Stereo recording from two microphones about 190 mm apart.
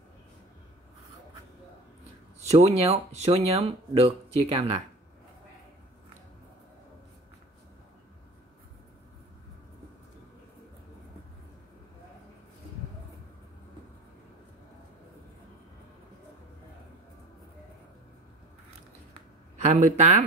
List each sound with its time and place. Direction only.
2.5 s speech: 35° right (ahead or behind)
19.6 s speech: 35° right (ahead or behind)